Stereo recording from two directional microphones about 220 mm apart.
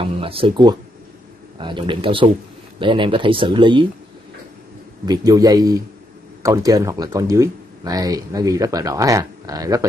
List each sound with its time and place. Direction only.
0.0 s speech: 25° right (ahead or behind)
5.0 s speech: 15° right (ahead or behind)